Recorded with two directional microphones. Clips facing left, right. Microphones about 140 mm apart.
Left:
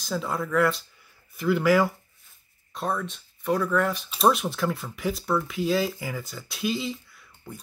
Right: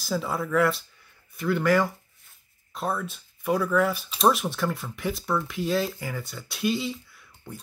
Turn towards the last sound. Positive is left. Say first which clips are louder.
# even
turn(degrees=0)  # may be behind; listen again after turning